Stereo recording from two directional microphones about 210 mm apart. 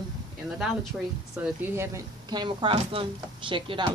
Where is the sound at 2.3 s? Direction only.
20° right (ahead or behind).